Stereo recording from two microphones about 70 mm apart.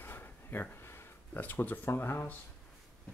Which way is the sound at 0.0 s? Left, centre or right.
Left.